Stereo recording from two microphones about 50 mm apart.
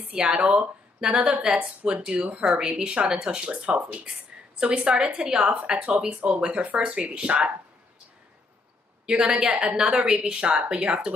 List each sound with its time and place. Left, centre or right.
0.1 s speech: centre
9.0 s speech: centre